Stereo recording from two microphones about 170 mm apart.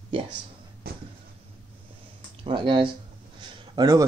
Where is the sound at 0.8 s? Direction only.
65° right (ahead or behind).